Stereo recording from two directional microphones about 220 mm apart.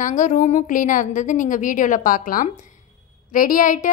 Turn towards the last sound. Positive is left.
turn(degrees=35)  # may be behind; listen again after turning